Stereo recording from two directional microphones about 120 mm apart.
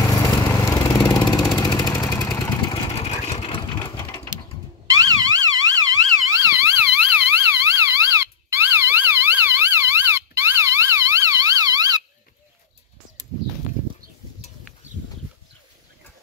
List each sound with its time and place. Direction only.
0.0 s lawn mower: 25° left (ahead or behind)
0.9 s vehicle: 35° left (ahead or behind)
1.3 s vehicle: 25° left (ahead or behind)
1.6 s vehicle: 35° left (ahead or behind)
3.0 s sewing machine: 65° left (ahead or behind)
4.8 s siren: 30° right (ahead or behind)